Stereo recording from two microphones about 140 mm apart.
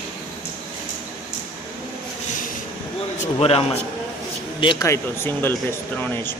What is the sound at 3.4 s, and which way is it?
Speech, 45° left (ahead or behind).